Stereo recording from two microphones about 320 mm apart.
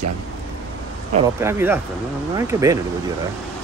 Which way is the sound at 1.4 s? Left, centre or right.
Centre.